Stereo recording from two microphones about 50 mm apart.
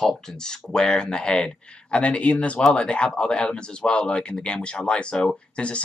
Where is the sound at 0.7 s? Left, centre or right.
Centre.